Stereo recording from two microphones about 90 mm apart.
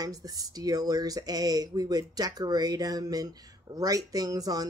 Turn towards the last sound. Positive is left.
turn(degrees=-45)  # may be behind; listen again after turning